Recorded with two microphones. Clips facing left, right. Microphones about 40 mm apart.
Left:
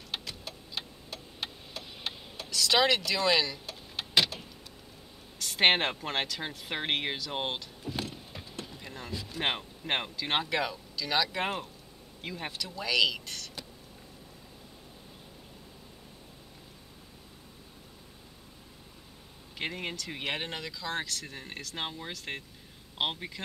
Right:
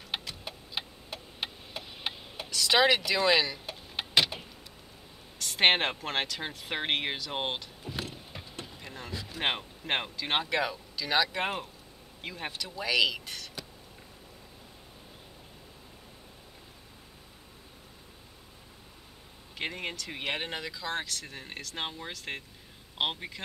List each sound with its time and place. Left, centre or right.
0.1 s clock: centre
0.5 s tick-tock: centre
2.5 s vehicle: centre
5.4 s speech: centre
19.5 s speech: centre